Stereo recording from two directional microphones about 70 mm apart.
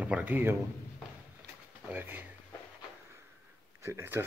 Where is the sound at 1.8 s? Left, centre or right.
Right.